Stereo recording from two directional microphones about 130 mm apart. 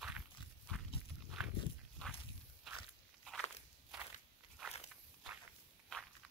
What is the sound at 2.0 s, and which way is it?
Walk, 5° left (ahead or behind).